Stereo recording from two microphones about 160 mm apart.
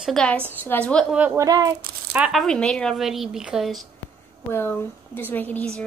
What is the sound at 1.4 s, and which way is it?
Speech, 25° right (ahead or behind).